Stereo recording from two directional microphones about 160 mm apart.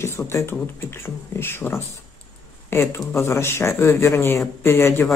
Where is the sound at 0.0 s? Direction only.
15° left (ahead or behind).